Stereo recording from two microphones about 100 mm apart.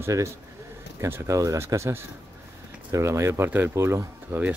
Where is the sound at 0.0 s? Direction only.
30° right (ahead or behind).